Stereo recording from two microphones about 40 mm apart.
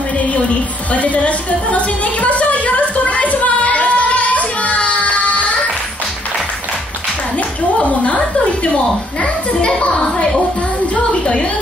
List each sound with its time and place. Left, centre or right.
0.9 s music: left
7.8 s a sound: left
9.2 s a child's voice: left